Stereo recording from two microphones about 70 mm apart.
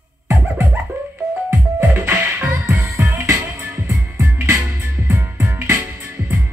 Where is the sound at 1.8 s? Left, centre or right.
Right.